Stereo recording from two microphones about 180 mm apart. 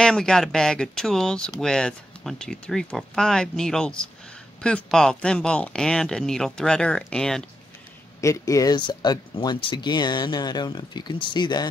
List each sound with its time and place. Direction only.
0.0 s speech: 5° left (ahead or behind)
8.2 s speech: 20° left (ahead or behind)